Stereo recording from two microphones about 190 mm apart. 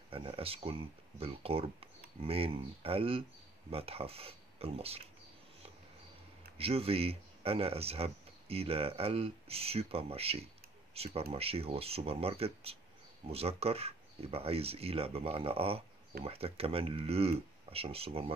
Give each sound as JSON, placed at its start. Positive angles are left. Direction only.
{"t": 0.1, "sound": "speech", "side_deg": -30}
{"t": 6.6, "sound": "speech", "side_deg": -30}